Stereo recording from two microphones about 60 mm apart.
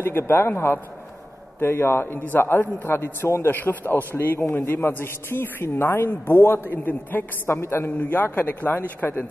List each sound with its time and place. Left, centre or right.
0.0 s a man's voice: left
3.4 s a man's voice: left
7.4 s a man's voice: left